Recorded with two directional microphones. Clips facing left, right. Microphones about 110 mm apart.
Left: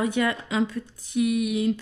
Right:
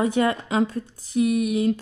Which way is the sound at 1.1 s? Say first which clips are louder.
Right 2 dB; 35° right (ahead or behind).